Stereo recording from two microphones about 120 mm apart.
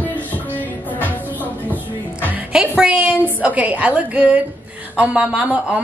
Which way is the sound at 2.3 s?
10° right (ahead or behind).